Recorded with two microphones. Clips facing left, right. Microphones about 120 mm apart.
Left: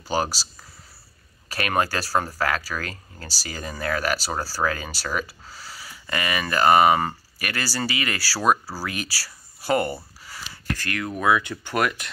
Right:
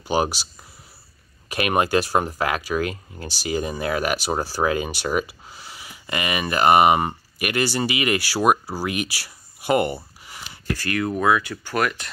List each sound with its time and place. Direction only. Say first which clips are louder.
1.5 s speech: right 4 dB; 15° right (ahead or behind)
10.2 s a sound: right 2 dB; 20° right (ahead or behind)
10.9 s speech: right 7 dB; 5° right (ahead or behind)
11.2 s speech: left 2 dB; 10° left (ahead or behind)